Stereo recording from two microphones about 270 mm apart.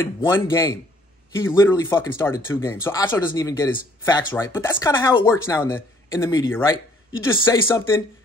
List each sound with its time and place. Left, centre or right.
0.0 s speech: centre